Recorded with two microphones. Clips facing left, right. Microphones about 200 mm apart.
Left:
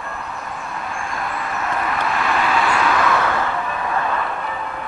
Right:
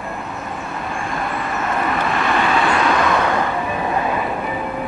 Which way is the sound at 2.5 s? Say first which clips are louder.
Right 1 dB; 30° right (ahead or behind).